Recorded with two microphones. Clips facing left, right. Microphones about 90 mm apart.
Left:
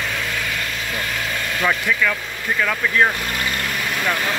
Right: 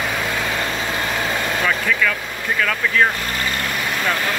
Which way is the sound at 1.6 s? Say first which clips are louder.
Left 2 dB; 10° left (ahead or behind).